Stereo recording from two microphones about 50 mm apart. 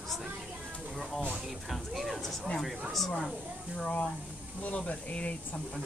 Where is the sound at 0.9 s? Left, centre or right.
Centre.